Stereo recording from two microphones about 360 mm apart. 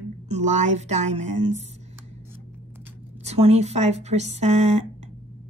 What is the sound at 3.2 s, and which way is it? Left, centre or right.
Speech, centre.